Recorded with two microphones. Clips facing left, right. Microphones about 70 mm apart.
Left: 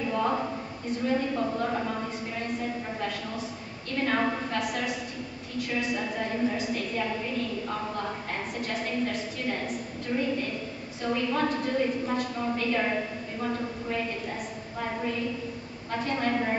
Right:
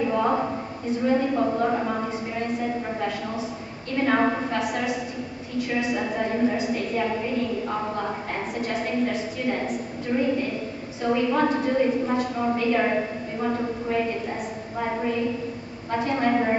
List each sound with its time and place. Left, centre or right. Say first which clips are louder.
0.0 s a sound: right 5 dB; centre
1.0 s a woman's voice: right 5 dB; centre
3.0 s a woman's voice: right 5 dB; centre
4.6 s a woman's voice: right 4 dB; centre
8.5 s a woman's voice: right 6 dB; centre
10.1 s a woman's voice: right 5 dB; centre